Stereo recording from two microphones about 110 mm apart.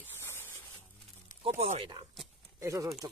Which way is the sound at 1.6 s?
70° right (ahead or behind).